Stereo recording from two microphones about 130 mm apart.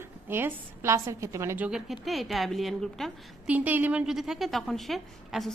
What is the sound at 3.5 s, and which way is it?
Speech, 10° right (ahead or behind).